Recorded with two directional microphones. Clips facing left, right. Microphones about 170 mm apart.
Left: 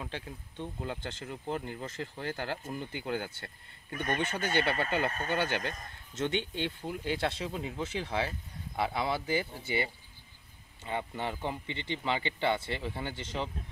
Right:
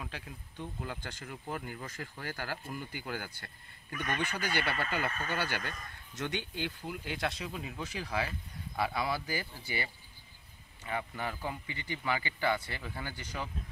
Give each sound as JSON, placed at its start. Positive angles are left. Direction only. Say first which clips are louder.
{"t": 0.0, "sound": "a man's voice", "louder": "left 4 dB", "side_deg": 25}